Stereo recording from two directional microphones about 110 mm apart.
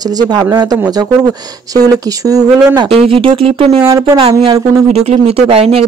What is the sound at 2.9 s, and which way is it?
Speech, 60° right (ahead or behind).